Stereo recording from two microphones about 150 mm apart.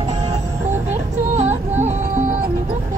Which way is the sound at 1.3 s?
50° right (ahead or behind).